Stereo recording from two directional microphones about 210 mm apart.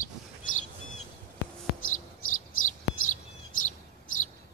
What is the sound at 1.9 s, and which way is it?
Chirp, 40° left (ahead or behind).